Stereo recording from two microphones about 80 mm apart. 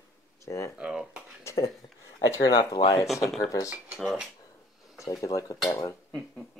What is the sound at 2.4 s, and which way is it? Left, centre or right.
Speech, left.